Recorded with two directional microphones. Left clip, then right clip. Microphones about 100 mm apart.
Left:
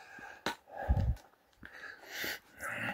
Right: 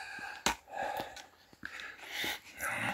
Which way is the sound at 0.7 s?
10° left (ahead or behind).